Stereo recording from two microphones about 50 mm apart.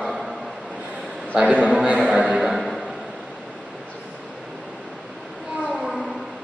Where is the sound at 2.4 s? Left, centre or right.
Centre.